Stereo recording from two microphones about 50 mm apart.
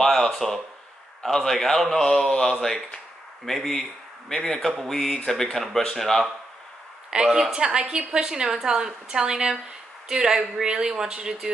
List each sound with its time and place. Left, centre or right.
0.0 s a man's voice: centre
7.2 s a man's voice: centre
7.5 s a woman's voice: centre